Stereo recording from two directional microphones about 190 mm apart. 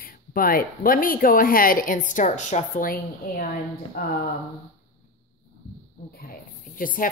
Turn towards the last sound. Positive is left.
turn(degrees=45)  # may be behind; listen again after turning